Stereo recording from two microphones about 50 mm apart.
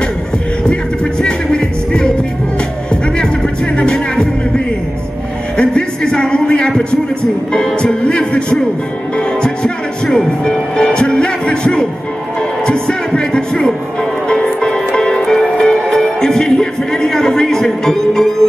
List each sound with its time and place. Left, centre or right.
1.2 s music: centre
3.7 s music: centre
5.6 s a sound: centre
7.5 s music: centre